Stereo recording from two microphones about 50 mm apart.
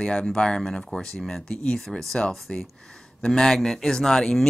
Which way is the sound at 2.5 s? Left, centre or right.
Centre.